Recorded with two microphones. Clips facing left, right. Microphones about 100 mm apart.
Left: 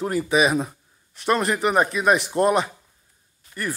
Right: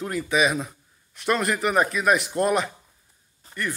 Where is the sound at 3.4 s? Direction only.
35° right (ahead or behind).